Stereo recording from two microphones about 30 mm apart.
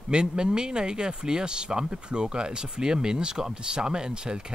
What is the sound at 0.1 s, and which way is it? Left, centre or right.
Speech, right.